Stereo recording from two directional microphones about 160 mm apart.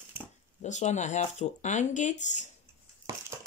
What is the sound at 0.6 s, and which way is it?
Speech, 45° left (ahead or behind).